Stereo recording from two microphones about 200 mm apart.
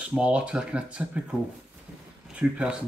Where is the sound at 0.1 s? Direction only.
5° right (ahead or behind).